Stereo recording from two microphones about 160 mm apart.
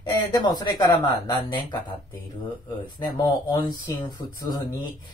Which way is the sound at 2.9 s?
25° left (ahead or behind).